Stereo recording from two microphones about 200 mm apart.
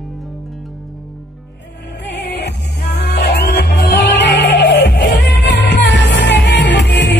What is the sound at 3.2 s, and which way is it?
Music, 55° left (ahead or behind).